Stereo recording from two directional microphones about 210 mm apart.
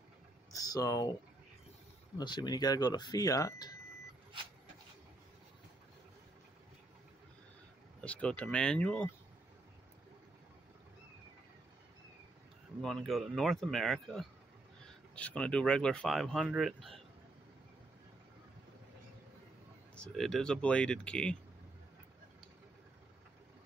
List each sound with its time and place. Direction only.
0.6 s speech: 20° left (ahead or behind)
2.1 s speech: 20° left (ahead or behind)
8.0 s speech: 5° left (ahead or behind)
12.8 s speech: centre (ahead or behind)
20.0 s speech: centre (ahead or behind)